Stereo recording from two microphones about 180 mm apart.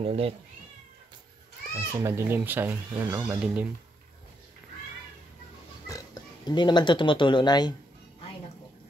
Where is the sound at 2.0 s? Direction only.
15° right (ahead or behind).